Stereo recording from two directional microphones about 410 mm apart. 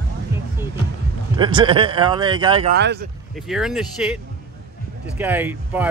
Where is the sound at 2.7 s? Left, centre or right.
Right.